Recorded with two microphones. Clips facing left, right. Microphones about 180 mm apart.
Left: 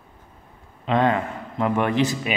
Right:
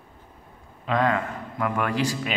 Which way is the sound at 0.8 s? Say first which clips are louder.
Left 3 dB; 25° left (ahead or behind).